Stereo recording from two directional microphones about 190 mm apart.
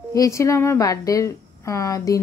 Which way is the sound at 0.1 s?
15° left (ahead or behind).